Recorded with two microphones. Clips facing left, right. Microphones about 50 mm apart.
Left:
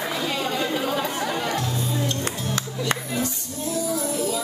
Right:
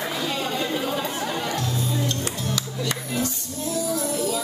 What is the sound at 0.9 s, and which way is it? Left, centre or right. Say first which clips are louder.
Chatter: left 2 dB; left.